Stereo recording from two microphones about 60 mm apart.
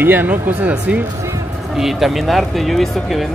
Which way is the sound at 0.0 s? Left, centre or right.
Right.